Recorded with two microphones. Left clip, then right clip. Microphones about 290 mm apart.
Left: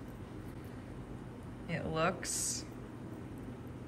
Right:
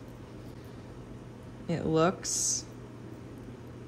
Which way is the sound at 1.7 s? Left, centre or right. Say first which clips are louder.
Right 7 dB; centre.